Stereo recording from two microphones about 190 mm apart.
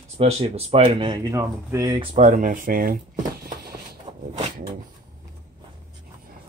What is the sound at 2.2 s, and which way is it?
Speech, 45° right (ahead or behind).